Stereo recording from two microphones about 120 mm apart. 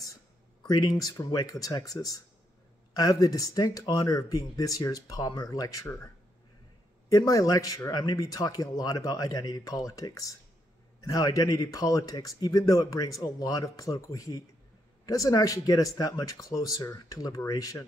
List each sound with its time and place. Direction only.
0.6 s speech: 35° left (ahead or behind)
7.1 s speech: 30° left (ahead or behind)